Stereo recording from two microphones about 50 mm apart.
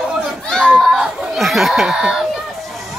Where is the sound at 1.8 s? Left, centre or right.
Centre.